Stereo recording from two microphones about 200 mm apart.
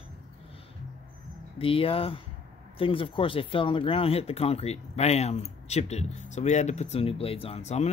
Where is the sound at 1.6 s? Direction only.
25° left (ahead or behind).